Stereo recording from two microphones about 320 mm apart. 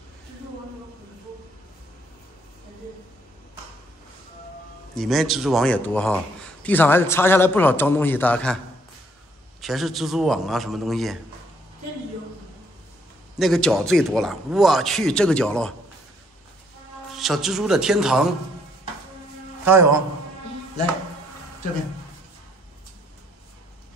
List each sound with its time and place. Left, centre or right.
4.9 s a man's voice: centre
9.6 s a man's voice: centre
13.4 s a man's voice: centre
17.1 s a man's voice: centre
19.6 s a man's voice: centre